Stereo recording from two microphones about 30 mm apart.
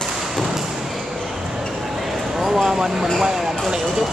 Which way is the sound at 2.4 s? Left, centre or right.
Centre.